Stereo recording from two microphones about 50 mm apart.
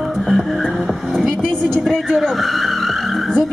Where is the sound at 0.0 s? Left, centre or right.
Centre.